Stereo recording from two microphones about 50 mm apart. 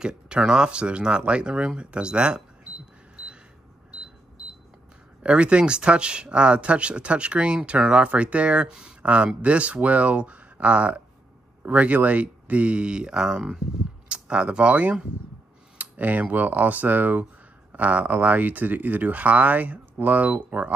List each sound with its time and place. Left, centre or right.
0.0 s speech: centre
5.2 s speech: right
8.6 s speech: centre
9.0 s speech: right